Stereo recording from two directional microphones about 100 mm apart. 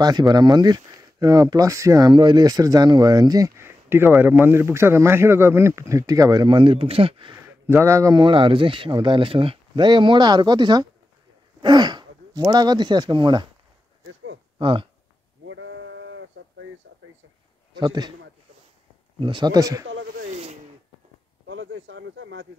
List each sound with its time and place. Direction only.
0.0 s speech: 40° right (ahead or behind)
2.1 s speech: 50° right (ahead or behind); by 7.3 s 65° right (ahead or behind)
7.3 s speech: 25° right (ahead or behind)
8.2 s speech: 60° right (ahead or behind)
9.8 s speech: 50° right (ahead or behind)
14.6 s speech: 60° right (ahead or behind)
17.7 s speech: 45° right (ahead or behind)
19.1 s speech: 55° right (ahead or behind); by 19.9 s 40° right (ahead or behind)